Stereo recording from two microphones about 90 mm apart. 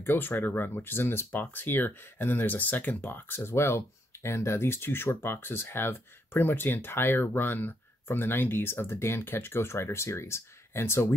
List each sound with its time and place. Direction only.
0.0 s speech: 25° left (ahead or behind)